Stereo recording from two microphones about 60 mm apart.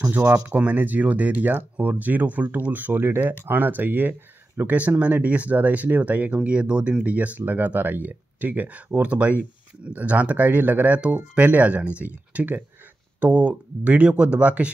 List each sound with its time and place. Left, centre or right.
0.6 s speech: right